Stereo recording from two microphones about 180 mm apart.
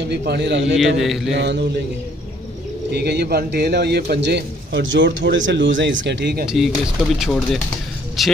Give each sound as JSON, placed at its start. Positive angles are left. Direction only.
{"t": 0.1, "sound": "a man's voice", "side_deg": -65}
{"t": 0.9, "sound": "speech", "side_deg": 0}
{"t": 1.3, "sound": "a man's voice", "side_deg": -75}
{"t": 2.9, "sound": "a man's voice", "side_deg": -65}
{"t": 6.4, "sound": "speech", "side_deg": 0}